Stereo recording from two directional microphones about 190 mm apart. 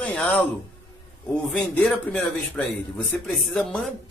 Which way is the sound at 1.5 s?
5° left (ahead or behind).